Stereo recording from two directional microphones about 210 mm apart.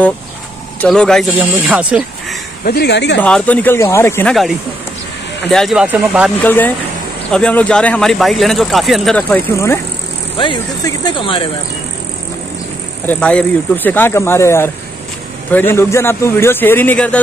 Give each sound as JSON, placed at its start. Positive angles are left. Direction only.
{"t": 0.7, "sound": "speech", "side_deg": 5}
{"t": 2.6, "sound": "speech", "side_deg": 50}
{"t": 3.2, "sound": "speech", "side_deg": 5}
{"t": 6.4, "sound": "speech", "side_deg": 10}
{"t": 10.3, "sound": "speech", "side_deg": 25}
{"t": 13.0, "sound": "speech", "side_deg": 5}